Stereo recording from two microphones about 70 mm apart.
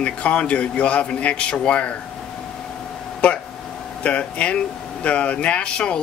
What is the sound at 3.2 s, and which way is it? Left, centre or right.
Speech, centre.